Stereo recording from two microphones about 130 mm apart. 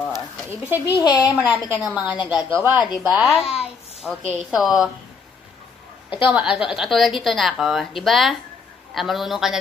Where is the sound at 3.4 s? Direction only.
50° left (ahead or behind).